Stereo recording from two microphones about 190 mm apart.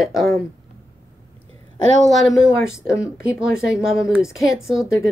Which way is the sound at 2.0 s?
Centre (ahead or behind).